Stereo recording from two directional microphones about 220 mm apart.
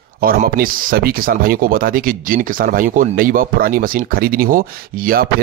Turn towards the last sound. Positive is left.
turn(degrees=-40)  # may be behind; listen again after turning